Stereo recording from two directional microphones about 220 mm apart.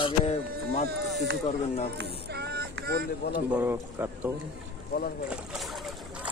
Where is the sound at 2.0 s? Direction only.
50° right (ahead or behind).